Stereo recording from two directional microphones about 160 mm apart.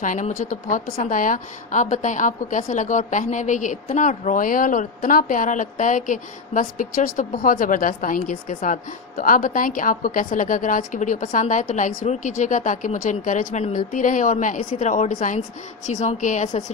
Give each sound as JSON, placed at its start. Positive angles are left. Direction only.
{"t": 0.0, "sound": "a woman's voice", "side_deg": 55}